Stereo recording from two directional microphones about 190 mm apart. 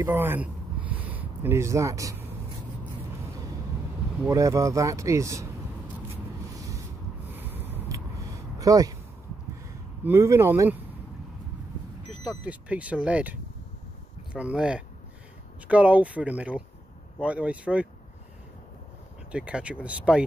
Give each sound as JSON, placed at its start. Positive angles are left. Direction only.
{"t": 0.0, "sound": "a sound", "side_deg": -10}
{"t": 4.3, "sound": "speech", "side_deg": -15}
{"t": 7.3, "sound": "a sound", "side_deg": -10}
{"t": 10.0, "sound": "speech", "side_deg": -15}
{"t": 12.3, "sound": "speech", "side_deg": -5}
{"t": 19.3, "sound": "speech", "side_deg": -5}